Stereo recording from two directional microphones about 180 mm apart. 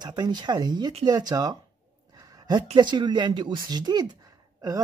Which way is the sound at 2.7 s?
25° right (ahead or behind).